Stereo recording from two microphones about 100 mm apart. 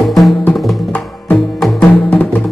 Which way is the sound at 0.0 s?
Centre (ahead or behind).